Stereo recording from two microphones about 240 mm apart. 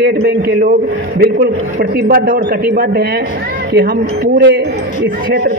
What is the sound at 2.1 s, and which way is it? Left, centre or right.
Speech, right.